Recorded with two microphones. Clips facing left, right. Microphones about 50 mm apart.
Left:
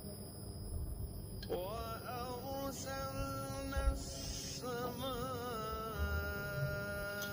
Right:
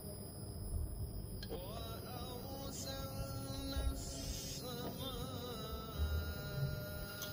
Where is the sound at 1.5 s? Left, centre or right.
Left.